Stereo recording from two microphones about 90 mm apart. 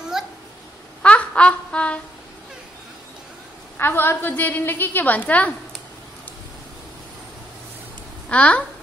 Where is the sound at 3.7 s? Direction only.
25° left (ahead or behind).